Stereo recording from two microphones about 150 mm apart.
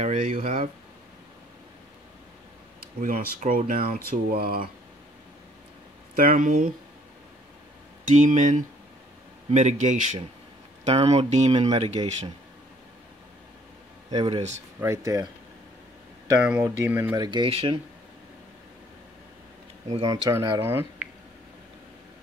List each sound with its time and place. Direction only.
0.0 s speech: 55° right (ahead or behind)
0.4 s speech: 70° right (ahead or behind)
3.0 s speech: 65° right (ahead or behind); by 4.6 s 85° right
6.1 s speech: 65° right (ahead or behind)
8.1 s speech: 55° right (ahead or behind)
14.1 s speech: 35° right (ahead or behind)
14.8 s speech: 20° right (ahead or behind)
16.3 s speech: 5° right (ahead or behind)
17.2 s speech: 30° right (ahead or behind)
20.1 s speech: 25° right (ahead or behind)